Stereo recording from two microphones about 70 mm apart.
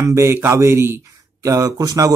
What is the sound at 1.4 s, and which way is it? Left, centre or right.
Speech, right.